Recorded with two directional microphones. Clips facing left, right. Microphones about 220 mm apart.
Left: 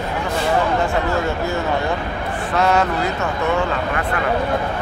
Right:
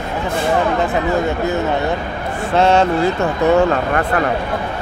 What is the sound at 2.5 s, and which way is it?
Speech, 25° right (ahead or behind).